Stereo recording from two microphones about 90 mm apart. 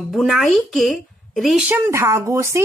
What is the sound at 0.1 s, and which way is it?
Speech, centre (ahead or behind).